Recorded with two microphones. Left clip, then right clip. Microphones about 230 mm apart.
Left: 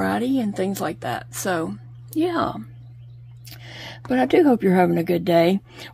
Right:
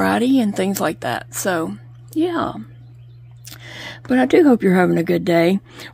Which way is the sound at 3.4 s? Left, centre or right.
Right.